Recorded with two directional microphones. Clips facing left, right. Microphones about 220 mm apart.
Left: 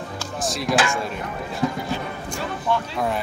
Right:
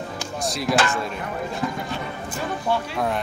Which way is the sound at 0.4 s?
Centre (ahead or behind).